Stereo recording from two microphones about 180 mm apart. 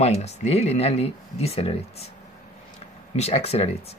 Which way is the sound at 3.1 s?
35° left (ahead or behind).